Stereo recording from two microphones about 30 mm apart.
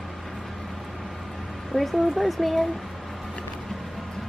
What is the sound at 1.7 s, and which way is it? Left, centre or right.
Speech, centre.